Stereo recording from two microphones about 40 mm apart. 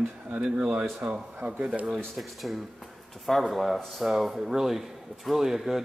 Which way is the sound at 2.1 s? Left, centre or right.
Centre.